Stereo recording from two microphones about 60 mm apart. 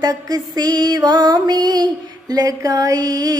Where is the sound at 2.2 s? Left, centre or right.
Right.